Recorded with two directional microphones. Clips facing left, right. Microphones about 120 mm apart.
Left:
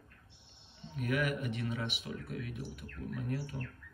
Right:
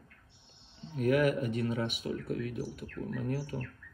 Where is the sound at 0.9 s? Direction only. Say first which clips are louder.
Right 7 dB; 40° right (ahead or behind).